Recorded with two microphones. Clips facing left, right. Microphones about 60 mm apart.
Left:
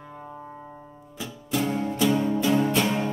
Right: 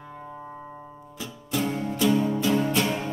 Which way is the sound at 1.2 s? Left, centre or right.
Centre.